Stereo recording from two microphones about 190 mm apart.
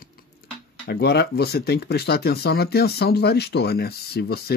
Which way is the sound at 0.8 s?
60° left (ahead or behind).